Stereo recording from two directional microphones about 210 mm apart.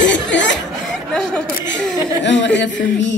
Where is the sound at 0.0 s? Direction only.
60° left (ahead or behind).